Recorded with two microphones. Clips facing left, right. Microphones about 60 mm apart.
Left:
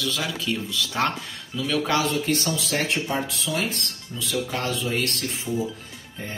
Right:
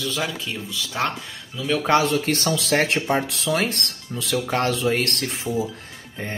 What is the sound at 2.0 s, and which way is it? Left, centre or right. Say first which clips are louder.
Speech: right 2 dB; right.